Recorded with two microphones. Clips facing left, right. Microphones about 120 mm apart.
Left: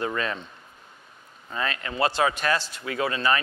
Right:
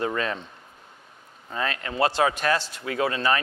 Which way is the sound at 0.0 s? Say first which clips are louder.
Right 1 dB; 45° right (ahead or behind).